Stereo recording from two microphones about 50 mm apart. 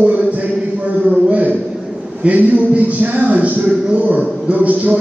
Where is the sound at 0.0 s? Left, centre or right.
Right.